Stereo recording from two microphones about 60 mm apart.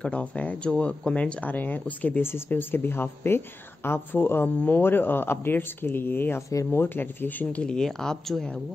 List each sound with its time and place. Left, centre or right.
0.0 s speech: centre
2.2 s a woman's voice: left
7.6 s speech: centre